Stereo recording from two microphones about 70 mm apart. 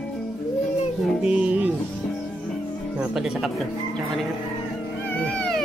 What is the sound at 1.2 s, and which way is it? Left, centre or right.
Speech, centre.